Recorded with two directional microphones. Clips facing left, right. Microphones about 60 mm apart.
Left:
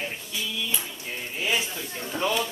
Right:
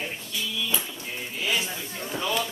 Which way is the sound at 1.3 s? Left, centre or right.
Left.